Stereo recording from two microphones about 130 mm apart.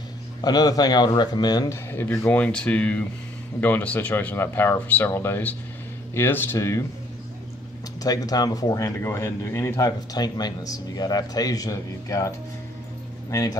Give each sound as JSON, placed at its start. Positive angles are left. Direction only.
{"t": 0.4, "sound": "a man's voice", "side_deg": 30}
{"t": 1.9, "sound": "speech", "side_deg": 15}
{"t": 8.0, "sound": "speech", "side_deg": 30}